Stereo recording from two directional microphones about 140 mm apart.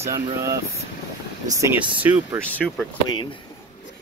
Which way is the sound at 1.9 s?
10° right (ahead or behind).